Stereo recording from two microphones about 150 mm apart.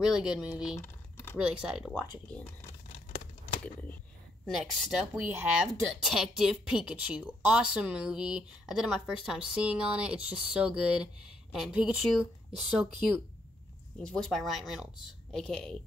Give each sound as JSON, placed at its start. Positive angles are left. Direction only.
{"t": 0.0, "sound": "a woman's voice", "side_deg": -5}
{"t": 0.7, "sound": "a sound", "side_deg": 15}
{"t": 1.4, "sound": "a woman's voice", "side_deg": -5}
{"t": 4.5, "sound": "a woman's voice", "side_deg": -5}
{"t": 13.9, "sound": "a woman's voice", "side_deg": 5}